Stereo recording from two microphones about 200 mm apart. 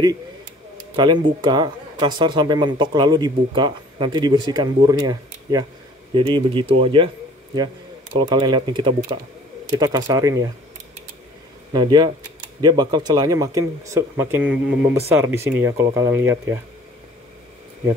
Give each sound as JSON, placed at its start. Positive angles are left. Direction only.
{"t": 0.9, "sound": "speech", "side_deg": -20}
{"t": 8.2, "sound": "speech", "side_deg": -25}
{"t": 11.7, "sound": "speech", "side_deg": -20}